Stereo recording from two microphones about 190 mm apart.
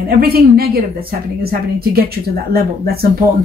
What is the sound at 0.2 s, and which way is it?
A woman's voice, 55° right (ahead or behind).